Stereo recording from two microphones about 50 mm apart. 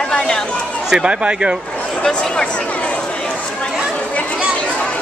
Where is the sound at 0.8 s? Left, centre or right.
Centre.